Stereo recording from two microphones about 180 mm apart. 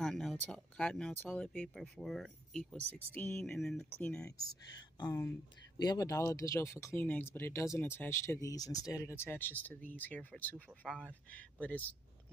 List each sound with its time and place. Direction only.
0.0 s speech: centre (ahead or behind)
4.6 s speech: 25° left (ahead or behind)